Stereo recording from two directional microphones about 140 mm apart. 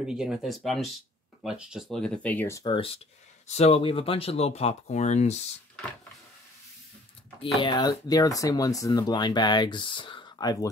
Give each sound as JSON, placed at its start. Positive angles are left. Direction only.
{"t": 0.0, "sound": "speech", "side_deg": -5}
{"t": 2.6, "sound": "speech", "side_deg": 40}
{"t": 3.4, "sound": "speech", "side_deg": 50}
{"t": 7.5, "sound": "speech", "side_deg": 35}